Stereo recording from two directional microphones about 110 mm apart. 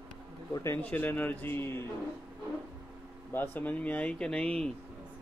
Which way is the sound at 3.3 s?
20° left (ahead or behind).